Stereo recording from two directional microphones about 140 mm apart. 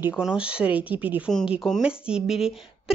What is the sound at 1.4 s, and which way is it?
Speech, centre (ahead or behind).